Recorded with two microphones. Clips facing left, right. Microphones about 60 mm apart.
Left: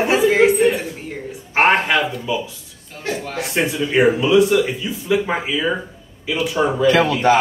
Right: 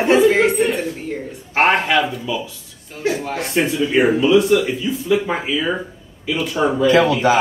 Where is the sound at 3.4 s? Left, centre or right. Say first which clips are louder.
Right 1 dB; centre.